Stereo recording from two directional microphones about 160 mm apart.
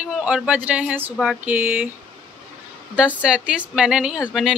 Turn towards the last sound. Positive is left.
turn(degrees=-5)  # may be behind; listen again after turning